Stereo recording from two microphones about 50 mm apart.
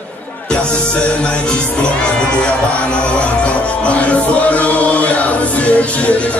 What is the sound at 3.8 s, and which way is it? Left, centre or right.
Chant, left.